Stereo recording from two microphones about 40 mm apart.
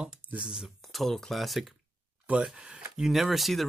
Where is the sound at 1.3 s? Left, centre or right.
Centre.